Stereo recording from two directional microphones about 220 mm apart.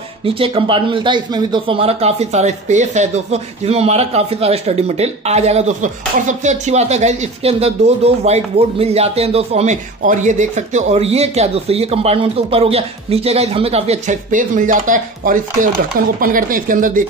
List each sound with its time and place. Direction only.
0.2 s a man's voice: 25° right (ahead or behind)